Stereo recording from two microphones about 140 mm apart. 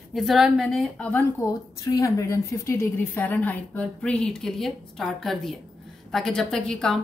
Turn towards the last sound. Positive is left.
turn(degrees=5)  # may be behind; listen again after turning